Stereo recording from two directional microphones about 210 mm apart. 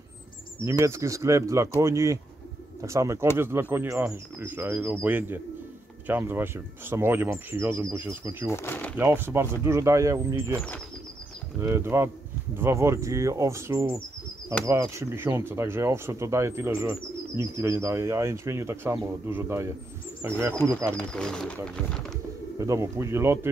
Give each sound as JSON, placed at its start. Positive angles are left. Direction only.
{"t": 0.7, "sound": "speech", "side_deg": -15}
{"t": 8.5, "sound": "speech", "side_deg": 10}
{"t": 8.9, "sound": "speech", "side_deg": -10}
{"t": 11.6, "sound": "speech", "side_deg": -10}
{"t": 20.9, "sound": "speech", "side_deg": 5}
{"t": 22.6, "sound": "speech", "side_deg": -15}